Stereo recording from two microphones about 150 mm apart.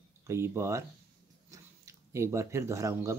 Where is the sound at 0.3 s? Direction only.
20° right (ahead or behind).